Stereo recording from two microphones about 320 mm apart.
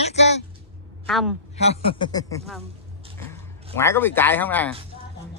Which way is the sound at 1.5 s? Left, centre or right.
Centre.